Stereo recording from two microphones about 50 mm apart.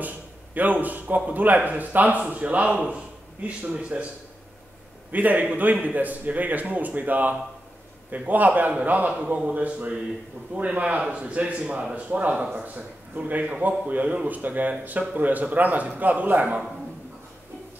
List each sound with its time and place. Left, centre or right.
0.6 s a man's voice: right
5.1 s a man's voice: right